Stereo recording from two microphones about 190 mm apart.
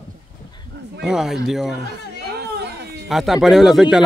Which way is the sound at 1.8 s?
60° right (ahead or behind).